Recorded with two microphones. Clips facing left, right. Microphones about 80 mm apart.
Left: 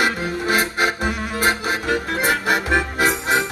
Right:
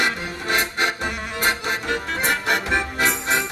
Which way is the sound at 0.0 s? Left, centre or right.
Centre.